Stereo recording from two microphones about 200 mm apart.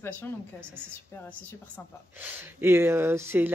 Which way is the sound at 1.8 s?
10° left (ahead or behind).